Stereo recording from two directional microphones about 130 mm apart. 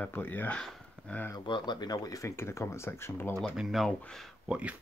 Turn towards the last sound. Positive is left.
turn(degrees=0)  # may be behind; listen again after turning